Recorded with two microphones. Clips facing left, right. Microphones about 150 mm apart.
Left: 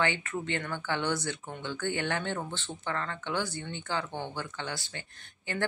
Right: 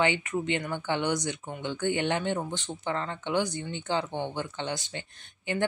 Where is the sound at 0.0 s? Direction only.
15° right (ahead or behind).